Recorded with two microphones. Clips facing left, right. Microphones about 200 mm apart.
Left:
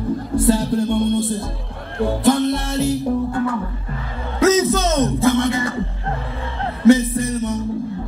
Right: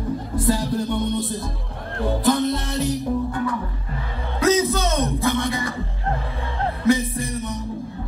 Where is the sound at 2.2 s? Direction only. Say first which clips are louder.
Left 4 dB; 15° right (ahead or behind).